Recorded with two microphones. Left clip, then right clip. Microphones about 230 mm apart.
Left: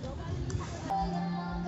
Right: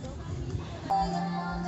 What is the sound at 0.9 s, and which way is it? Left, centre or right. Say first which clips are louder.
Music: right 5 dB; right.